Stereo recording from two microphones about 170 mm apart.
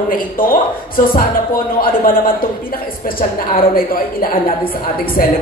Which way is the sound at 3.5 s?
60° left (ahead or behind).